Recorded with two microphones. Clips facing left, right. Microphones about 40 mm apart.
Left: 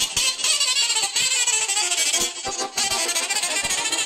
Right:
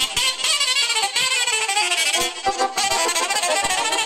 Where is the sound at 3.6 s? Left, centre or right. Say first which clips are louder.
Right 5 dB; right.